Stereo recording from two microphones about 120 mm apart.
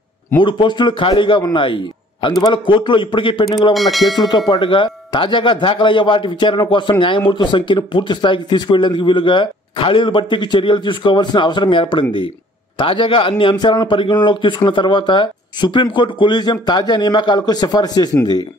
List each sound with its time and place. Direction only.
0.4 s speech: 40° left (ahead or behind)
3.7 s speech: centre (ahead or behind)
4.5 s a man's voice: 45° left (ahead or behind)